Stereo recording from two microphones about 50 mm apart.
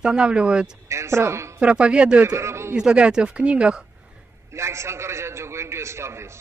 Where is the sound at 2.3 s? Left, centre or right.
Right.